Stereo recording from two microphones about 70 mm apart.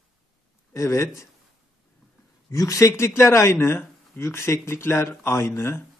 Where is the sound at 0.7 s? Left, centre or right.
Left.